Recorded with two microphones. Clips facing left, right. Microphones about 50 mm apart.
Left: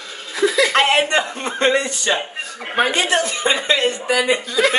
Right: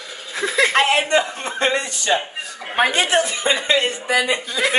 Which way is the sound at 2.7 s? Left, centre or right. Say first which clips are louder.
Even; centre.